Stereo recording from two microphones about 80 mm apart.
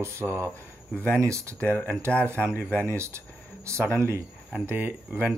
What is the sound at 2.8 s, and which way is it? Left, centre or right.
Speech, right.